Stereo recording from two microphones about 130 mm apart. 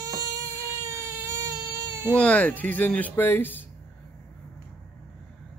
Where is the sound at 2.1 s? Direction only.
10° left (ahead or behind).